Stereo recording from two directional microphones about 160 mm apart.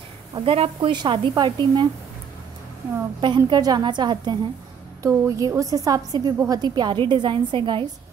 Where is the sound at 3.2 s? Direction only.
25° right (ahead or behind).